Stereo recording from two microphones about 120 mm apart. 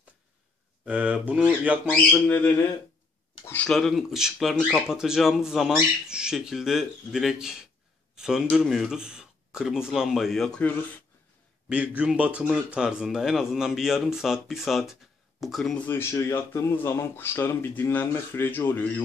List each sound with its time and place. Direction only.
0.8 s speech: 10° right (ahead or behind)
1.9 s speech: 10° left (ahead or behind)
3.7 s speech: centre (ahead or behind)
11.7 s speech: 10° right (ahead or behind); by 15.9 s 5° left (ahead or behind)
15.9 s speech: 20° left (ahead or behind)